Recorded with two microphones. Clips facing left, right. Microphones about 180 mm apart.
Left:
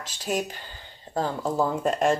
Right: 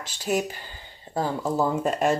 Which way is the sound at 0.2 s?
10° right (ahead or behind).